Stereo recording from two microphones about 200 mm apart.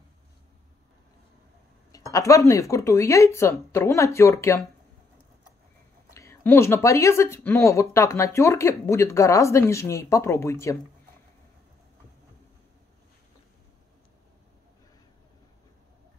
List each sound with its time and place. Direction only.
1.9 s speech: 15° left (ahead or behind)
6.1 s speech: 15° left (ahead or behind)